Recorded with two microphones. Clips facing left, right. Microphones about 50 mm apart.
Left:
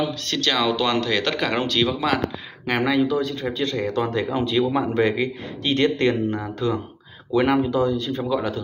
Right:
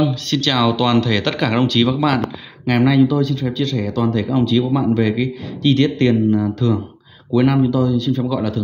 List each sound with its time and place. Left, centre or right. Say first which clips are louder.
0.3 s a man's voice: right 2 dB; left